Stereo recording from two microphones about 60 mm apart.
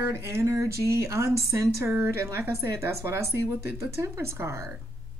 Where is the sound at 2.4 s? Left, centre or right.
Right.